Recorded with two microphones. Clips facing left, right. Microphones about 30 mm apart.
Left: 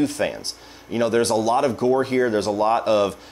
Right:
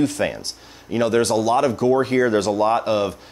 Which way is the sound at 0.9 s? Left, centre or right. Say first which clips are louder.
Right 1 dB; centre.